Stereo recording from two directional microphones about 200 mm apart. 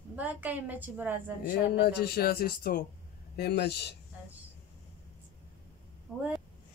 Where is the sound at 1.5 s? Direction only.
55° left (ahead or behind).